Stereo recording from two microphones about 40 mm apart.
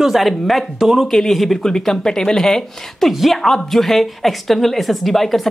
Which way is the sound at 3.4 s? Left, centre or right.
Centre.